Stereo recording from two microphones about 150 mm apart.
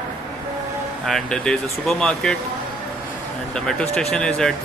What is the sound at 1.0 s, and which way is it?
Speech, 5° left (ahead or behind).